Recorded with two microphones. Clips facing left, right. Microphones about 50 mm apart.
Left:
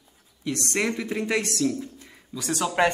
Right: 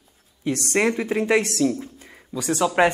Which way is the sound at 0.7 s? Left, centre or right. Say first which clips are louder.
Right 6 dB; right.